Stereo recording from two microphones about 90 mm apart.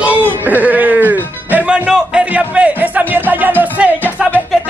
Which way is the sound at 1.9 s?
10° right (ahead or behind).